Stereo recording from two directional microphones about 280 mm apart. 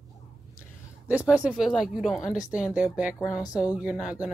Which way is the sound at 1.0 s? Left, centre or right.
Centre.